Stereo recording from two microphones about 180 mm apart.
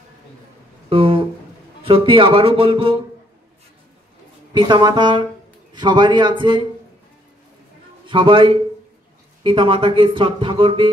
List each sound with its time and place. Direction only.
0.8 s a sound: 30° right (ahead or behind)
1.8 s speech: 30° right (ahead or behind)
4.6 s speech: 25° right (ahead or behind)
8.1 s speech: 30° right (ahead or behind)